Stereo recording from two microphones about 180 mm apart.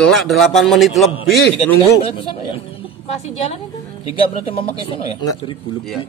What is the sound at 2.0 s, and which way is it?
Speech, 30° left (ahead or behind).